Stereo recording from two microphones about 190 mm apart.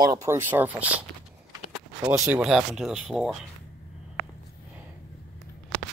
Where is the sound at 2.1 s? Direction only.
10° right (ahead or behind).